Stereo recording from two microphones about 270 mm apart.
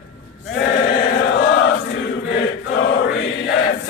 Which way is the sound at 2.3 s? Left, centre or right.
Left.